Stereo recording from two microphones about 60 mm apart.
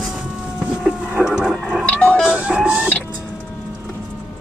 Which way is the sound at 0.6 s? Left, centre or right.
Centre.